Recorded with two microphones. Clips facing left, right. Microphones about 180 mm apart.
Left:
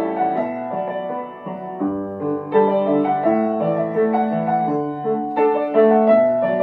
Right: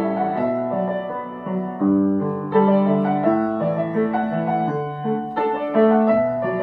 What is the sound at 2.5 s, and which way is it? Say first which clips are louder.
Music: left 1 dB; 20° left (ahead or behind).